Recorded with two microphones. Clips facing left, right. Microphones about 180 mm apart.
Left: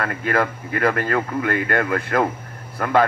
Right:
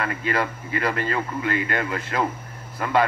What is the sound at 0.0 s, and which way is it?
Speech, 50° left (ahead or behind).